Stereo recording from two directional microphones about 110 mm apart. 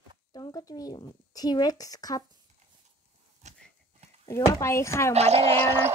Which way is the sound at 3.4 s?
90° right.